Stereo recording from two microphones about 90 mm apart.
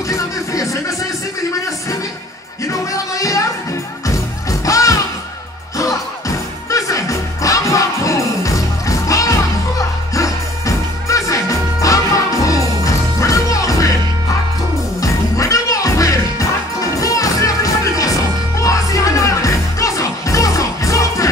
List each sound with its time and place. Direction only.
0.1 s a sound: 40° left (ahead or behind)
2.6 s music: 40° left (ahead or behind)
15.0 s music: 35° left (ahead or behind)